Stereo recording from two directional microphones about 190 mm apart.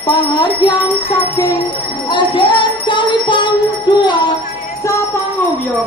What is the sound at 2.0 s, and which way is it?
Music, 25° left (ahead or behind).